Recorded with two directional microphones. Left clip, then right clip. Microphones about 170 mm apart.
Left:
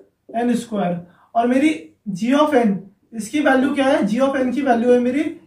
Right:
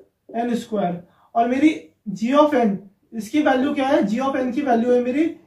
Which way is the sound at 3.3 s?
25° left (ahead or behind).